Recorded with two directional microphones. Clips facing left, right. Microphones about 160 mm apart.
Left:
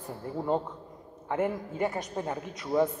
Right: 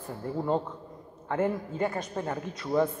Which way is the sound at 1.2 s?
15° left (ahead or behind).